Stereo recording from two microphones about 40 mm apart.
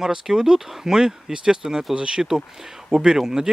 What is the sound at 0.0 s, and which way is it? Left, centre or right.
Speech, centre.